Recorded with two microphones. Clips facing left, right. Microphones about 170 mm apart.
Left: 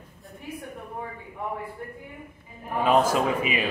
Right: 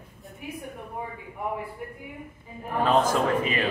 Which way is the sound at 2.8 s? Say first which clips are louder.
Left 1 dB; 10° left (ahead or behind).